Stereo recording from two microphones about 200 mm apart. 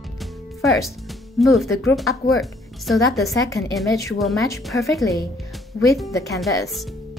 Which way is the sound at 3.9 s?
15° left (ahead or behind).